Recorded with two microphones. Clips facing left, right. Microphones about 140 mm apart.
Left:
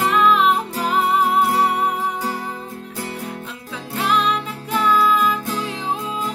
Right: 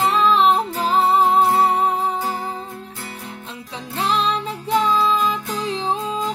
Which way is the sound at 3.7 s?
30° right (ahead or behind).